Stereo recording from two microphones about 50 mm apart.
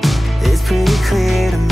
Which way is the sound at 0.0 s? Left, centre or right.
Centre.